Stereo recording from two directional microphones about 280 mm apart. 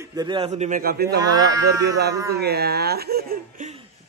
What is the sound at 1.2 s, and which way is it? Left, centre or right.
Speech, centre.